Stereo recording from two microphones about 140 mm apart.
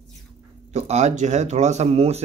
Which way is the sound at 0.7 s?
50° right (ahead or behind).